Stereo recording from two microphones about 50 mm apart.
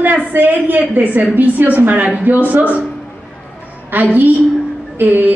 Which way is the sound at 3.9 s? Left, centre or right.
Right.